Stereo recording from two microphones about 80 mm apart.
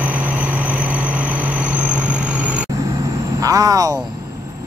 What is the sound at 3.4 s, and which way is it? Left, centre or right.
Vehicle, right.